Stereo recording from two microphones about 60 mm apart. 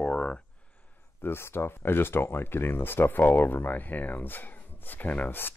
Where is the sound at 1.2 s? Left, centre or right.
Left.